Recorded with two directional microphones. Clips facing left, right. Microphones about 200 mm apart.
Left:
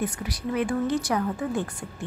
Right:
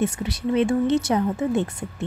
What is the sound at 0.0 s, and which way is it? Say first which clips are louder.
Speech: right 5 dB; 25° right (ahead or behind).